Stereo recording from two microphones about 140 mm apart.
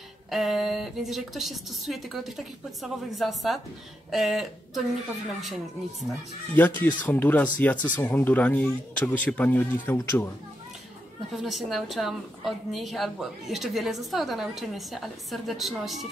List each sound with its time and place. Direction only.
0.3 s a woman's voice: centre (ahead or behind)
6.5 s speech: 10° left (ahead or behind)
11.4 s a woman's voice: centre (ahead or behind)